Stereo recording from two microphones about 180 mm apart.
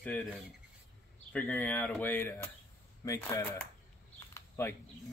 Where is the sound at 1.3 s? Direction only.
10° left (ahead or behind).